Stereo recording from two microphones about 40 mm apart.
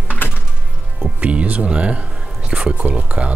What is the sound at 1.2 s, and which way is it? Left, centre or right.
Speech, right.